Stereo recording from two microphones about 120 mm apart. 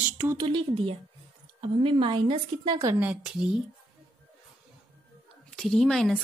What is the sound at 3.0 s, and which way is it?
Speech, 10° right (ahead or behind).